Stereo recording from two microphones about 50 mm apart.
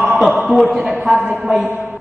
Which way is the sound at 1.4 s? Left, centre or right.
Centre.